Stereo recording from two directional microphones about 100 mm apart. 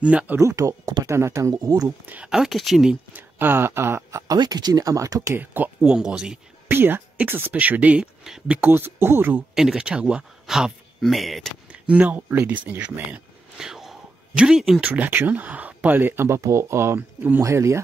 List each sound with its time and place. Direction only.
0.0 s speech: 10° right (ahead or behind)
0.4 s speech: 30° right (ahead or behind)
1.9 s speech: 15° right (ahead or behind)
2.3 s speech: 5° right (ahead or behind)
3.2 s speech: 20° right (ahead or behind)
4.3 s speech: 40° right (ahead or behind)
5.4 s speech: 20° right (ahead or behind)
5.8 s speech: 5° right (ahead or behind)
6.7 s speech: 20° right (ahead or behind)
8.5 s speech: 20° right (ahead or behind)
9.6 s speech: 5° right (ahead or behind)
11.7 s speech: 10° right (ahead or behind)
13.6 s a sound: 5° right (ahead or behind)
14.9 s speech: 20° right (ahead or behind)